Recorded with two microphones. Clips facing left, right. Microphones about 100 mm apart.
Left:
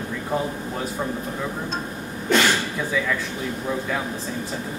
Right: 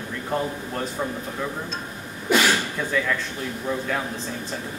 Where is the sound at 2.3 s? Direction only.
10° right (ahead or behind).